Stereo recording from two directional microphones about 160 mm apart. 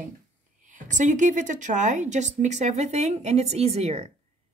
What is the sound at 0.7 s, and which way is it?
A woman's voice, 50° right (ahead or behind).